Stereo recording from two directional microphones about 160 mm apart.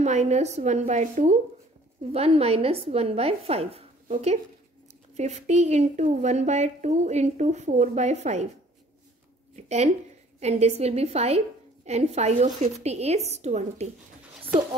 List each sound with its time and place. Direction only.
0.0 s a woman's voice: 45° right (ahead or behind)
9.6 s a woman's voice: 45° right (ahead or behind)